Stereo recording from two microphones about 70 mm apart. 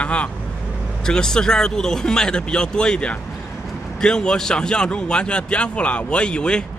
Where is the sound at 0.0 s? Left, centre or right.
Centre.